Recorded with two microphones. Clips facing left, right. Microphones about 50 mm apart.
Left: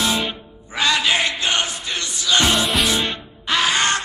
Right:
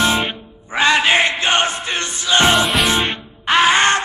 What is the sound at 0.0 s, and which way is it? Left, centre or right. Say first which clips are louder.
Music: right 4 dB; right.